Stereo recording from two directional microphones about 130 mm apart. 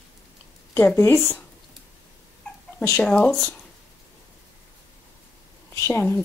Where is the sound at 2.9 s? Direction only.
5° left (ahead or behind).